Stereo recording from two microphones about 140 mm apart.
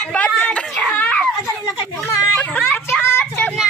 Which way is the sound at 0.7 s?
10° left (ahead or behind).